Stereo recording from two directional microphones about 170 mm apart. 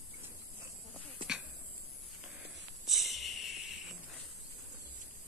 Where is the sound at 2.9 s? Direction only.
Centre (ahead or behind).